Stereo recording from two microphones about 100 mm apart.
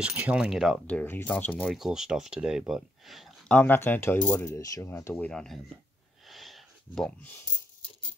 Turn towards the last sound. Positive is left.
turn(degrees=5)  # may be behind; listen again after turning